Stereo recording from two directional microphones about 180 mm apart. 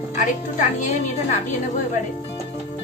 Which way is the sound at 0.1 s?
45° left (ahead or behind).